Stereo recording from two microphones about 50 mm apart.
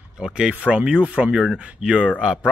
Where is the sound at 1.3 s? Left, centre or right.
Centre.